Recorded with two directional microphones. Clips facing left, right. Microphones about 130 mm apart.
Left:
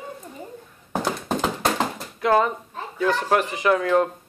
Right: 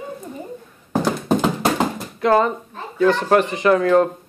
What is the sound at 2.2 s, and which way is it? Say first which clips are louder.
Speech: right 3 dB; 5° left (ahead or behind).